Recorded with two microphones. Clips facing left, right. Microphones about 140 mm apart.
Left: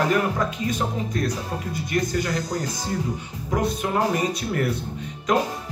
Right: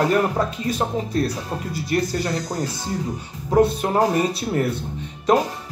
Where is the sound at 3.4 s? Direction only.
30° right (ahead or behind).